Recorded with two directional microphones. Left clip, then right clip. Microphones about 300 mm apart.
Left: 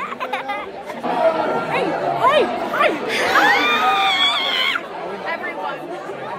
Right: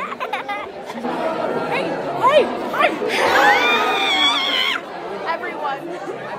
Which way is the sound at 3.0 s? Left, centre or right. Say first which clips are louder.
Right 2 dB; right.